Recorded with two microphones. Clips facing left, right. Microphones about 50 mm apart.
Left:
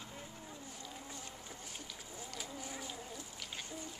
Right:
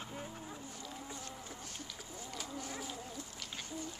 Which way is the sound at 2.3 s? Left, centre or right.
Centre.